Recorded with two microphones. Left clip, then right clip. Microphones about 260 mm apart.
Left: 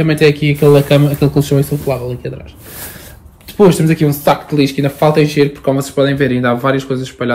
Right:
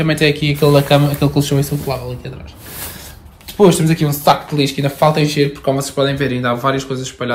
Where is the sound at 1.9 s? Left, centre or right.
Centre.